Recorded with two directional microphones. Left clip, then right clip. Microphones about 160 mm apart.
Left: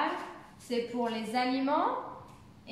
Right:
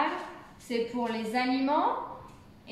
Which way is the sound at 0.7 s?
20° left (ahead or behind).